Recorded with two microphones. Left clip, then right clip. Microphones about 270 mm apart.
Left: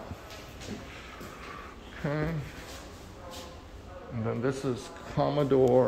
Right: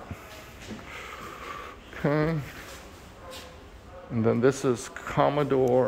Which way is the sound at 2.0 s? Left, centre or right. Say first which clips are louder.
Right 7 dB; right.